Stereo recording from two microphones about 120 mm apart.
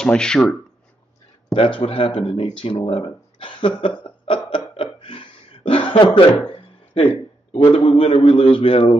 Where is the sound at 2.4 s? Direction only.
45° left (ahead or behind).